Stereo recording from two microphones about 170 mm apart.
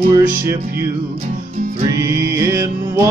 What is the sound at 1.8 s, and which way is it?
Music, 20° right (ahead or behind).